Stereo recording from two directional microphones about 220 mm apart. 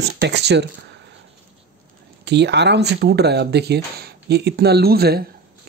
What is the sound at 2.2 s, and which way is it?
Speech, 50° right (ahead or behind).